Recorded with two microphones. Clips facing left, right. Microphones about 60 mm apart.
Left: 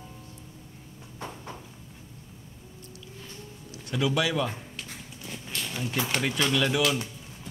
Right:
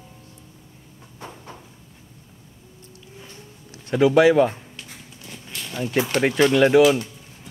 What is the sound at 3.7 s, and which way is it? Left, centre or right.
Speech, right.